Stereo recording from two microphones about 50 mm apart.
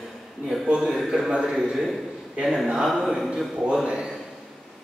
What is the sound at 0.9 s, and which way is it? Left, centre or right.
A man's voice, centre.